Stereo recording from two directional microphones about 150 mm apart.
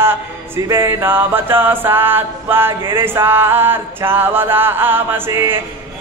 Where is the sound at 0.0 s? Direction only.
15° right (ahead or behind).